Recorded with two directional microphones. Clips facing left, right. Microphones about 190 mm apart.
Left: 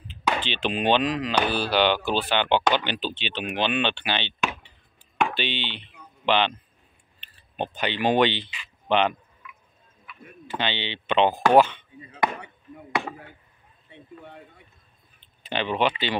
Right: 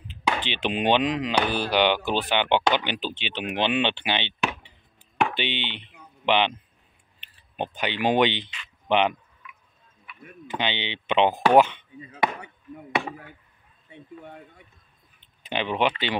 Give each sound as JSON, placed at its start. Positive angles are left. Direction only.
{"t": 0.1, "sound": "speech", "side_deg": -15}
{"t": 10.5, "sound": "speech", "side_deg": -15}
{"t": 15.4, "sound": "speech", "side_deg": -15}